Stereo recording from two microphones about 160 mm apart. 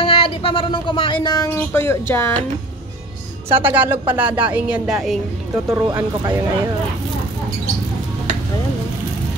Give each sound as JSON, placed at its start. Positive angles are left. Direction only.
{"t": 0.0, "sound": "speech", "side_deg": 35}
{"t": 3.4, "sound": "a woman's voice", "side_deg": -10}
{"t": 5.7, "sound": "a woman's voice", "side_deg": -15}